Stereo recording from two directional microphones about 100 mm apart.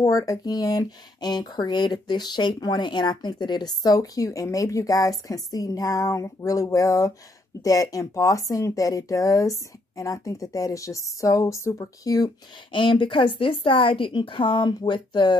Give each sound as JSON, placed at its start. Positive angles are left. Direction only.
{"t": 0.0, "sound": "speech", "side_deg": 35}
{"t": 12.7, "sound": "a woman's voice", "side_deg": 55}